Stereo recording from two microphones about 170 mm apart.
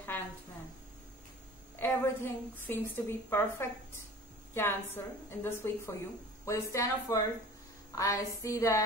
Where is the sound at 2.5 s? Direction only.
10° left (ahead or behind).